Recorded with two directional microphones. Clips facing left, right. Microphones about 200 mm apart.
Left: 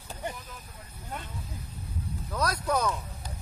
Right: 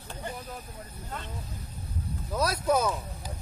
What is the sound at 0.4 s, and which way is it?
Vehicle, 45° right (ahead or behind).